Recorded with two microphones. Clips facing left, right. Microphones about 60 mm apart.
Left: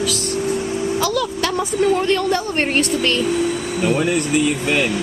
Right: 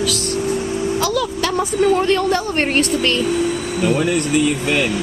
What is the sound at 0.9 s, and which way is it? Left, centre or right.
Speech, centre.